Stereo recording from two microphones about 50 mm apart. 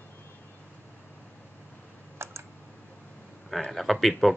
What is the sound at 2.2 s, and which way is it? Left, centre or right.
Computer keyboard, right.